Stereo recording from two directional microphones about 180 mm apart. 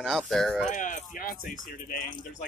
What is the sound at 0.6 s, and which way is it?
Speech, 45° left (ahead or behind).